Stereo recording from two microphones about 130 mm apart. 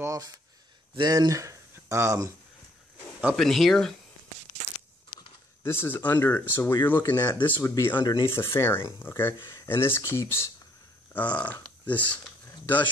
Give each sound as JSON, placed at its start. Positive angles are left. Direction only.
{"t": 0.0, "sound": "speech", "side_deg": -25}
{"t": 3.3, "sound": "speech", "side_deg": 0}
{"t": 5.6, "sound": "speech", "side_deg": 20}
{"t": 8.3, "sound": "speech", "side_deg": 20}